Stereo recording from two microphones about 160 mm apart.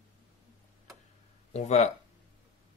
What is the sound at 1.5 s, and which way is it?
Speech, 45° left (ahead or behind).